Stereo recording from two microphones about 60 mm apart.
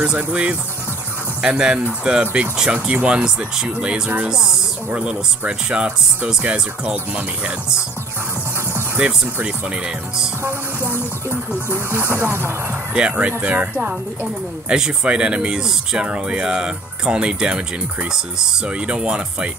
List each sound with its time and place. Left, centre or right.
0.0 s speech: right
4.3 s speech: centre
4.9 s speech: centre
8.9 s speech: centre
11.2 s speech: right
12.9 s speech: centre
18.7 s speech: centre